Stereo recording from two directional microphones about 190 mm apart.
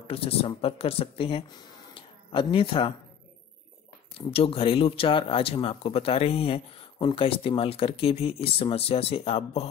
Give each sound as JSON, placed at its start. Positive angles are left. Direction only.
{"t": 0.1, "sound": "speech", "side_deg": 30}
{"t": 2.0, "sound": "a sound", "side_deg": 25}
{"t": 4.3, "sound": "speech", "side_deg": 30}